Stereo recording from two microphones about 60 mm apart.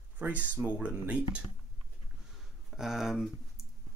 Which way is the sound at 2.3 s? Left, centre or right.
Centre.